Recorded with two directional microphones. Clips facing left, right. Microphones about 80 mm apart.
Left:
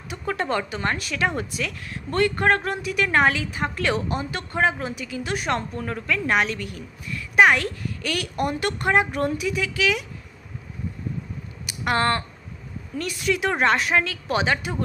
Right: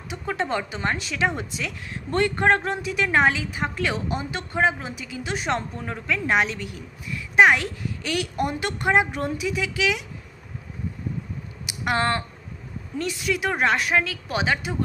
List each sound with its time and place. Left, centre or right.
0.1 s speech: centre
3.1 s a woman's voice: centre
11.6 s a sound: centre
12.9 s speech: right
13.3 s speech: centre